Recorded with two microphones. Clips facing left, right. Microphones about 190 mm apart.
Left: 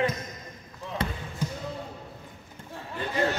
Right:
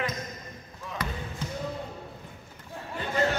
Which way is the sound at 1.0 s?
25° left (ahead or behind).